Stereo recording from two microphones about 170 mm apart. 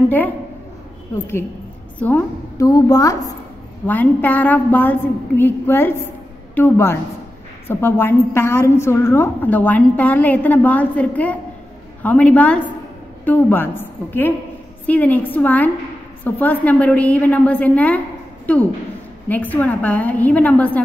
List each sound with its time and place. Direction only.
2.0 s a woman's voice: 10° left (ahead or behind)
19.2 s a woman's voice: 10° left (ahead or behind)